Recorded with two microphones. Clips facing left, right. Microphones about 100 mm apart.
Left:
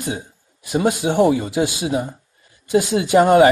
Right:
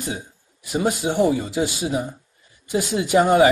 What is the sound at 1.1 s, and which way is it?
Speech, 60° left (ahead or behind).